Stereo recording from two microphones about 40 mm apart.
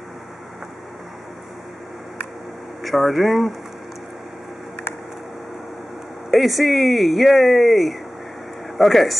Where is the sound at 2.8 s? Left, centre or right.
Centre.